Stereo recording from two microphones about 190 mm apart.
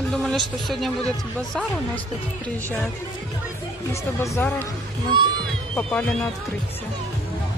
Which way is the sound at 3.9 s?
15° left (ahead or behind).